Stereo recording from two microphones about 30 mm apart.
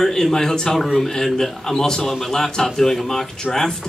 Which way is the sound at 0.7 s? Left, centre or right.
Centre.